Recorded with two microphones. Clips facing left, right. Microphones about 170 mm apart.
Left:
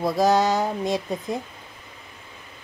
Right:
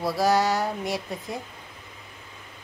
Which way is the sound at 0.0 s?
20° left (ahead or behind).